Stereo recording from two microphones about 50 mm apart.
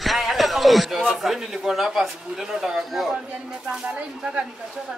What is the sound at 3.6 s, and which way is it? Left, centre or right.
Speech, centre.